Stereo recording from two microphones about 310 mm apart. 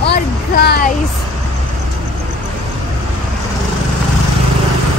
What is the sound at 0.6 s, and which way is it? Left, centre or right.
Speech, left.